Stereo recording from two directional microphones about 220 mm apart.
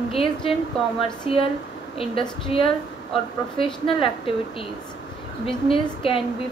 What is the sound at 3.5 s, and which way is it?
Speech, 25° left (ahead or behind).